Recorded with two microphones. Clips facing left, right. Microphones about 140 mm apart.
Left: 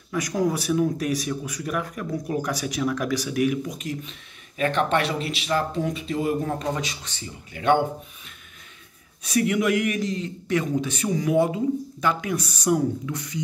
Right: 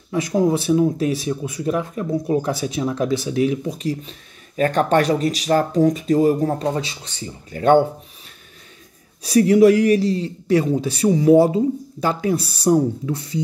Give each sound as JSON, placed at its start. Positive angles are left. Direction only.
{"t": 0.1, "sound": "speech", "side_deg": -25}
{"t": 9.2, "sound": "speech", "side_deg": -35}